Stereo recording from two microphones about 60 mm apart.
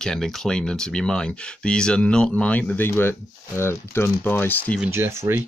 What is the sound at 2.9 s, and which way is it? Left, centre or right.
Speech, left.